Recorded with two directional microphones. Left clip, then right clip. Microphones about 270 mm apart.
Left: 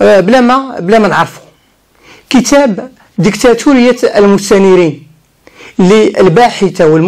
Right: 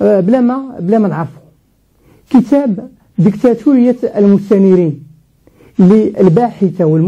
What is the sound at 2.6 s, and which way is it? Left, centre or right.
Speech, centre.